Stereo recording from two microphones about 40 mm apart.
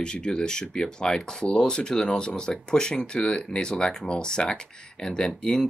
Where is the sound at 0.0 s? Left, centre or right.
Left.